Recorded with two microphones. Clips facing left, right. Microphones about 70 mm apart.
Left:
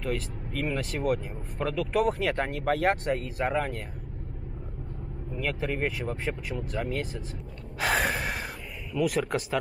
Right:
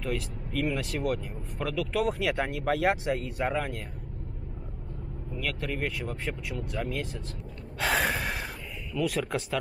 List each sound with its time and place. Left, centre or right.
0.0 s speech: centre
5.3 s speech: centre
5.8 s speech: centre
7.8 s gasp: centre
8.9 s speech: centre